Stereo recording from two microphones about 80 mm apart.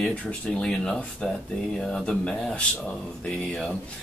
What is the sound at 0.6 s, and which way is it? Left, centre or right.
Speech, centre.